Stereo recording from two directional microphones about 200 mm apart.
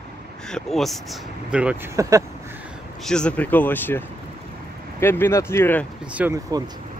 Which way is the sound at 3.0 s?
5° left (ahead or behind).